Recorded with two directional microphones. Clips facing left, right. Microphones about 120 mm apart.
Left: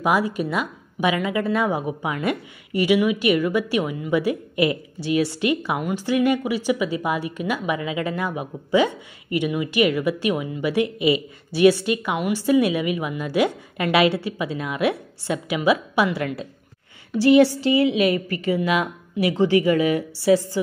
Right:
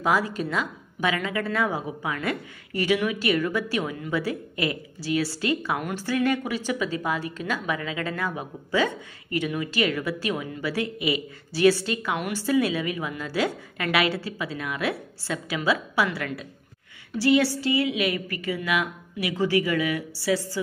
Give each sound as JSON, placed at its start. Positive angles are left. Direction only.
{"t": 0.0, "sound": "a woman's voice", "side_deg": 15}